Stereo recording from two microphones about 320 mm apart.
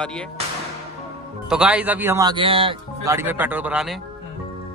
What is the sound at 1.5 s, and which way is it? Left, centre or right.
Speech, centre.